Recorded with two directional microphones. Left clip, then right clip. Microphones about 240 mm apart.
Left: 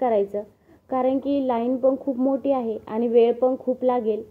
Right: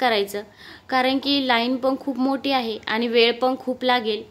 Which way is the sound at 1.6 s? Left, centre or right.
Right.